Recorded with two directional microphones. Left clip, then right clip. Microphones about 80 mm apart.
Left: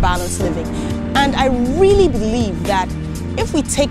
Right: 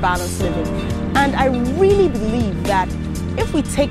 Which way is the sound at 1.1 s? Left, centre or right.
Left.